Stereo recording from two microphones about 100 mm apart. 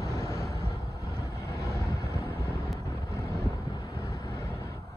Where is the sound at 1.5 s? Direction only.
30° left (ahead or behind).